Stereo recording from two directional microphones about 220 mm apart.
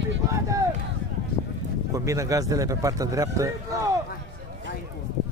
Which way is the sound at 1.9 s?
15° right (ahead or behind).